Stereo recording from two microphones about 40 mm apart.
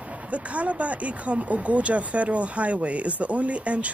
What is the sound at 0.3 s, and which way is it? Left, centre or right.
Speech, right.